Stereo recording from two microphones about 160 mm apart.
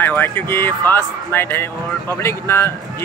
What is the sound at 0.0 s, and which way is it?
Speech, 15° left (ahead or behind).